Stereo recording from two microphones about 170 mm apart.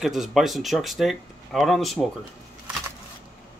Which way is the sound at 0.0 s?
Centre (ahead or behind).